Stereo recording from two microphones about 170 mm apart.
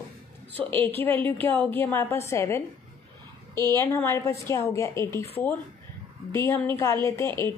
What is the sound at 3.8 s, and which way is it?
A woman's voice, 15° left (ahead or behind).